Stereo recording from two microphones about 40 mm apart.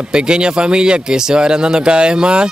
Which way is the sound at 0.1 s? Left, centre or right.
Right.